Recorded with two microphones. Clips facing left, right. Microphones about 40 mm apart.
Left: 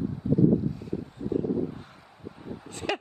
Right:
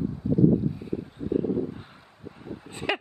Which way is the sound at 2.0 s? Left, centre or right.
Centre.